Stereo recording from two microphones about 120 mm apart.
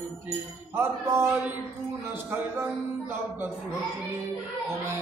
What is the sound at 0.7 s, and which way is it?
Speech, 15° right (ahead or behind).